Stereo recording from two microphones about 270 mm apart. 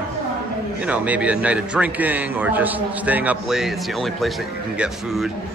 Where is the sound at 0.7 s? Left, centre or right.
Centre.